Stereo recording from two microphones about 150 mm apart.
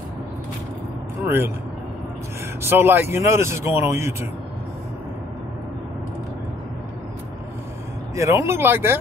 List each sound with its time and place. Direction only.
1.2 s speech: 15° right (ahead or behind)
2.6 s speech: 15° right (ahead or behind)
8.2 s speech: 20° right (ahead or behind)